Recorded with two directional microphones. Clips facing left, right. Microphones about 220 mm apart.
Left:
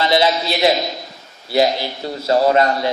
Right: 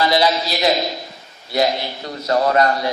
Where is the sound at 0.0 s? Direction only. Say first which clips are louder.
Left 1 dB; 25° left (ahead or behind).